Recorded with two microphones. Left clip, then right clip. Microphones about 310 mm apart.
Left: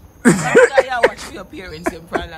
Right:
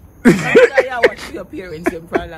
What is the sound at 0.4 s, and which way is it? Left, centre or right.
Speech, centre.